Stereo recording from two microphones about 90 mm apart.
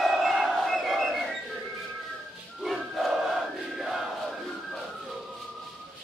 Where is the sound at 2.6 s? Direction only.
Centre (ahead or behind).